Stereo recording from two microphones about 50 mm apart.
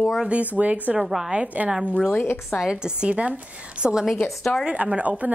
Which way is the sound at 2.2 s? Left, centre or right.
Left.